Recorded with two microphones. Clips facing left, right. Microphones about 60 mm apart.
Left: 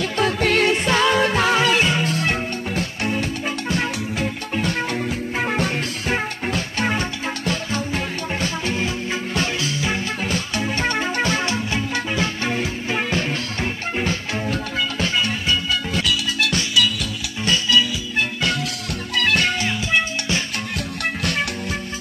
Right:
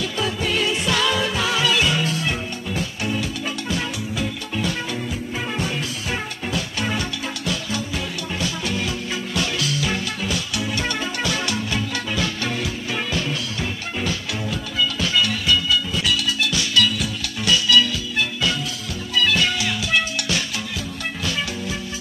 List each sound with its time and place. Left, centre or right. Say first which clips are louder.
0.0 s music: left 4 dB; left
0.8 s music: left 4 dB; left
16.7 s music: right 2 dB; centre
19.1 s music: even; left
19.9 s music: left 1 dB; left
21.2 s music: left 2 dB; left